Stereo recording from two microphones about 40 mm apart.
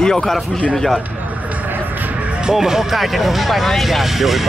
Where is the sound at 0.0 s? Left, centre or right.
Centre.